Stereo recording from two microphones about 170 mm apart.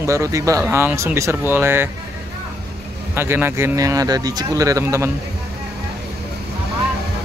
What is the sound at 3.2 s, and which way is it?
Speech, 15° right (ahead or behind).